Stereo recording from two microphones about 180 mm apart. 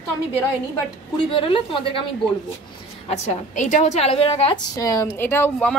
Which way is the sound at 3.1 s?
40° left (ahead or behind).